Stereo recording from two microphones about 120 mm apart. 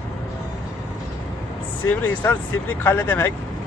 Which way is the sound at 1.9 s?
15° left (ahead or behind).